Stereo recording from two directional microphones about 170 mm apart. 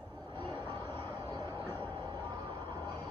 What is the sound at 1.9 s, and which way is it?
Vehicle, 25° right (ahead or behind).